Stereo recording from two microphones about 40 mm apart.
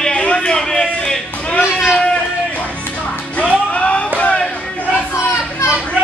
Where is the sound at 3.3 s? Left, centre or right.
Left.